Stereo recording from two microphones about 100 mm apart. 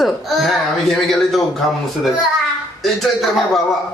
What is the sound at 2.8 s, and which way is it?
Speech, centre (ahead or behind).